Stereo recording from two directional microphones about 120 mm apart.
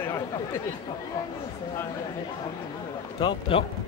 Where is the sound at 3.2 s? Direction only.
50° left (ahead or behind).